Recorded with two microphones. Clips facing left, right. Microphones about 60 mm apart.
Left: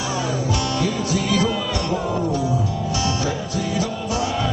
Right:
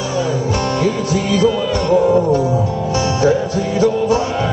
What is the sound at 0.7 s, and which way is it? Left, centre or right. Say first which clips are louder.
Music: right 5 dB; right.